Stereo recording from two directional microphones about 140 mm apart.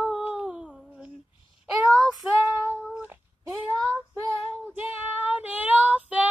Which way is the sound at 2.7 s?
15° right (ahead or behind).